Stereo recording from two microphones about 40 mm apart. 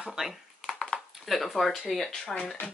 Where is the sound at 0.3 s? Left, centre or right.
Centre.